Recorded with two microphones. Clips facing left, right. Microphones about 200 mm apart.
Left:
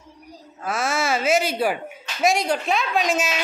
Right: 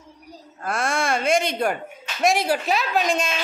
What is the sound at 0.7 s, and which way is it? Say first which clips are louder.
A woman's voice: even; 5° left (ahead or behind).